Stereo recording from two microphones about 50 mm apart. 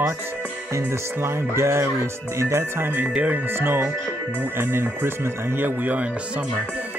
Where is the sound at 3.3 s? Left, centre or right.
Right.